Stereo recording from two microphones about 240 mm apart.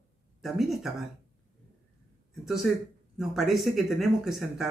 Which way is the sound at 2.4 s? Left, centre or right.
Centre.